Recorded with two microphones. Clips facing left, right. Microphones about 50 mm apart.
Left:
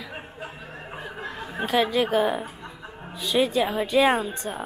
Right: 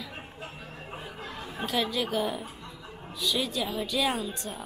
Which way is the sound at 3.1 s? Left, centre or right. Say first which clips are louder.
Left 7 dB; left.